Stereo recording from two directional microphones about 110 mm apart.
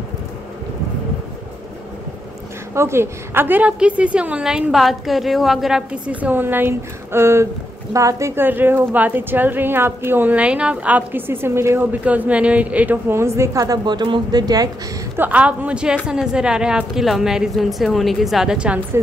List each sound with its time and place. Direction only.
2.7 s a woman's voice: 25° right (ahead or behind)
15.1 s a woman's voice: 15° right (ahead or behind)